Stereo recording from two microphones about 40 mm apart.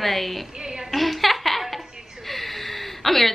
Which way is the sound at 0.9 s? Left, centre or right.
Centre.